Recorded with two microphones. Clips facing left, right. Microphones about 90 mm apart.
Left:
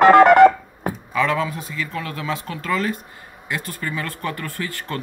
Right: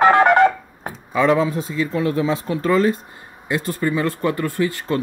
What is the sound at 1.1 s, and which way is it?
Speech, 25° right (ahead or behind).